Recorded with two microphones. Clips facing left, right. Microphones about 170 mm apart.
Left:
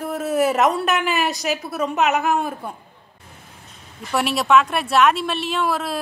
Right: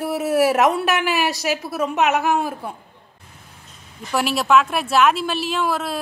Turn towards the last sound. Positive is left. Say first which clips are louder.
# even
turn(degrees=0)  # may be behind; listen again after turning